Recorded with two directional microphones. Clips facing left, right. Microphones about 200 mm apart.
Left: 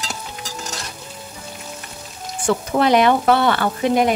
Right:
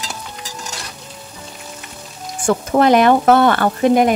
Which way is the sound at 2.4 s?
50° right (ahead or behind).